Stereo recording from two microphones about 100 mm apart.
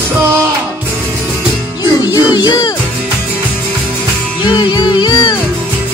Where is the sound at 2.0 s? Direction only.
45° left (ahead or behind).